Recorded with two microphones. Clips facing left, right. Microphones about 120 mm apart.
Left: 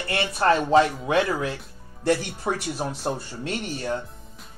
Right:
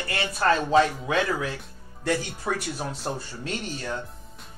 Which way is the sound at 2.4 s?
20° left (ahead or behind).